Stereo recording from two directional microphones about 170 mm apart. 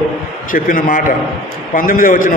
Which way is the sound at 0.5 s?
55° left (ahead or behind).